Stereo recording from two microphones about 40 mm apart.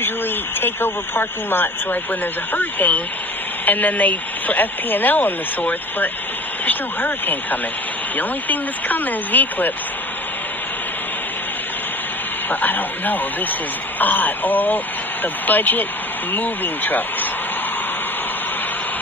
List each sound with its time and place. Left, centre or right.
0.6 s speech: left
2.5 s speech: left
12.4 s speech: left